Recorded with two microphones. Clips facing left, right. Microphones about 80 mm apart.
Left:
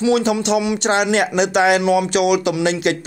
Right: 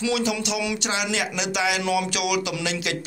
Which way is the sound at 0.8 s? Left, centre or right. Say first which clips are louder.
Left 9 dB; left.